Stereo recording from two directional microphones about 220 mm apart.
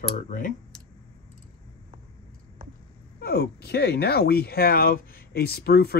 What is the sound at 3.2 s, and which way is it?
Speech, 45° left (ahead or behind).